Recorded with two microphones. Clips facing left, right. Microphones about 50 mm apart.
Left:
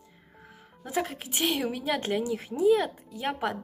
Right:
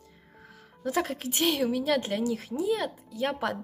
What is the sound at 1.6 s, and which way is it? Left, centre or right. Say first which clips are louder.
Speech: right 4 dB; left.